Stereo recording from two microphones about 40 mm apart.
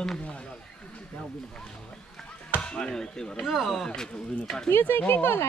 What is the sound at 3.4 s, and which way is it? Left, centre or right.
Speech, centre.